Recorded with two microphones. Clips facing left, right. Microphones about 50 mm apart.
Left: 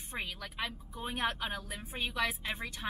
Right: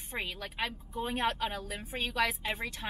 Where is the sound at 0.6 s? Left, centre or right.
Right.